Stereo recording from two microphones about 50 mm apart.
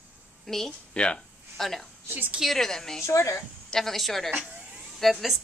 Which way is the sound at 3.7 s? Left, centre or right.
Centre.